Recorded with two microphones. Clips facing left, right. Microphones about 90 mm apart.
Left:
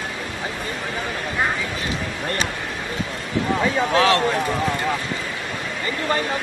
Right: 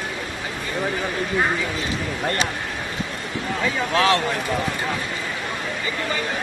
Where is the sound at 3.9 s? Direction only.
25° left (ahead or behind).